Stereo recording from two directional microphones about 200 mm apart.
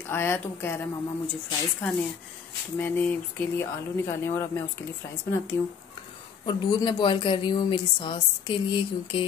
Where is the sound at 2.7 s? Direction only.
10° left (ahead or behind).